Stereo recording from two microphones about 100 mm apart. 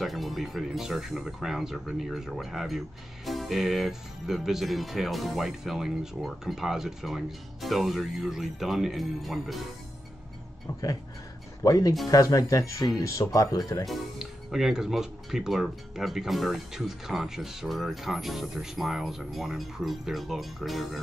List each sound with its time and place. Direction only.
0.0 s speech: centre (ahead or behind)
10.7 s speech: 30° left (ahead or behind)
13.8 s speech: centre (ahead or behind)